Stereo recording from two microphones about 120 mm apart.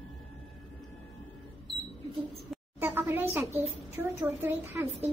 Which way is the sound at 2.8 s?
15° right (ahead or behind).